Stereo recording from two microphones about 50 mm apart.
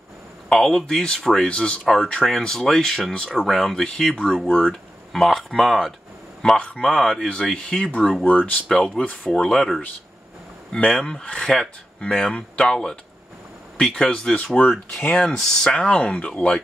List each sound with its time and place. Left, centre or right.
0.5 s speech: centre
3.8 s speech: centre
5.1 s speech: centre
6.8 s speech: centre
8.3 s speech: left
8.6 s speech: centre
8.9 s speech: left
9.3 s speech: centre
10.8 s speech: centre
14.6 s speech: left
15.2 s speech: centre
15.7 s speech: left